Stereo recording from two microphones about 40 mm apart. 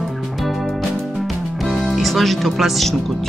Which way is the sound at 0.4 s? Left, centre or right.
Centre.